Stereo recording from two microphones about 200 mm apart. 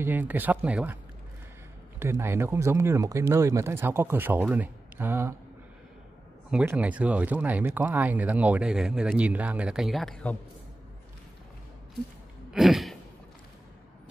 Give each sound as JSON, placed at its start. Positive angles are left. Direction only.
{"t": 0.0, "sound": "speech", "side_deg": -10}
{"t": 2.0, "sound": "speech", "side_deg": -10}
{"t": 6.5, "sound": "speech", "side_deg": -10}
{"t": 12.5, "sound": "a sound", "side_deg": 0}